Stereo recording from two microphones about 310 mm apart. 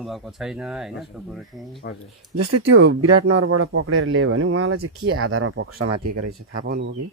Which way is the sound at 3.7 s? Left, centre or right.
Right.